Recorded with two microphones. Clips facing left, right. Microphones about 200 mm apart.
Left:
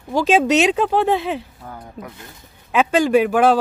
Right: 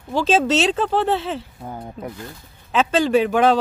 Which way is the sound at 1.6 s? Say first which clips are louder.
Right 3 dB; 25° right (ahead or behind).